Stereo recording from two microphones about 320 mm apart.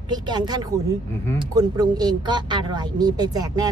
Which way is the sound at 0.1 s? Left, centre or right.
Centre.